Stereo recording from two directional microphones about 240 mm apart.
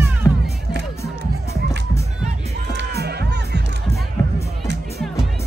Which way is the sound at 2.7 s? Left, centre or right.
Right.